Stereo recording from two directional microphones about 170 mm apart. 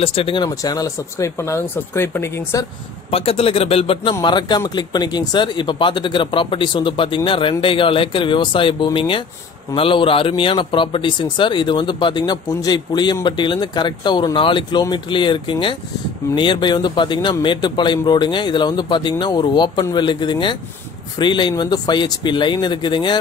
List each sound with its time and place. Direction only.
0.0 s speech: 35° left (ahead or behind); by 2.6 s 15° left (ahead or behind)
3.1 s speech: 35° left (ahead or behind)